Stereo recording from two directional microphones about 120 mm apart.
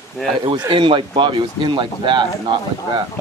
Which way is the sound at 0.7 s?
45° right (ahead or behind).